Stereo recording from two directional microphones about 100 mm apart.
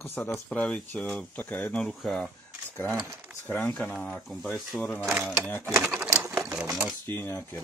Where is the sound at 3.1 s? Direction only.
15° right (ahead or behind).